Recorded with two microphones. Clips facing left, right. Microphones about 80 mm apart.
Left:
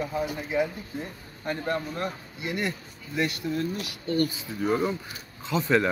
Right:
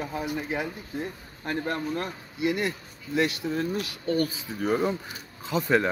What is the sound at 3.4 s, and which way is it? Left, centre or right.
Speech, right.